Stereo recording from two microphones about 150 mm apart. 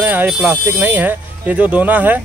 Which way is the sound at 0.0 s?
10° right (ahead or behind).